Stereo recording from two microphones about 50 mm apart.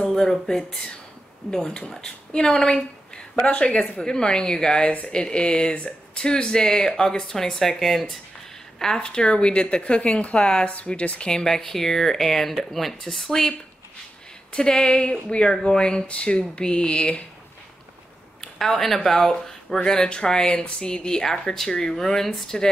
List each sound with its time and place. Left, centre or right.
0.1 s speech: centre
18.4 s a sound: centre
19.0 s speech: centre